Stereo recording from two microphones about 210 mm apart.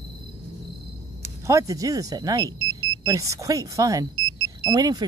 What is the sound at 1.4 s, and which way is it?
Speech, 15° right (ahead or behind).